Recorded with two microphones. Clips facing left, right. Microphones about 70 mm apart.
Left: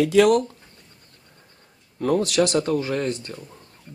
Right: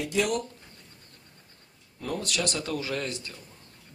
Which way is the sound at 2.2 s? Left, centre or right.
Left.